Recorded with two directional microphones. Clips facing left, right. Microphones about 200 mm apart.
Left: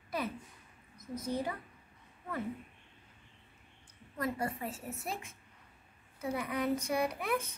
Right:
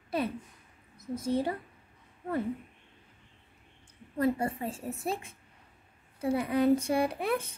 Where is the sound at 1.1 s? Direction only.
30° right (ahead or behind).